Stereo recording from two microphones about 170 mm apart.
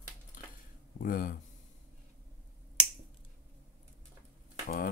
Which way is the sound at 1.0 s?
55° left (ahead or behind).